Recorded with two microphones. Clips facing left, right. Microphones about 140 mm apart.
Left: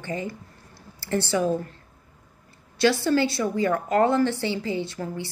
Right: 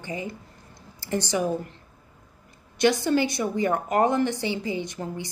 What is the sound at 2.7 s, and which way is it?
A woman's voice, 20° right (ahead or behind).